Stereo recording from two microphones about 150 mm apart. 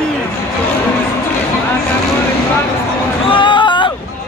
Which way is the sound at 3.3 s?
35° left (ahead or behind).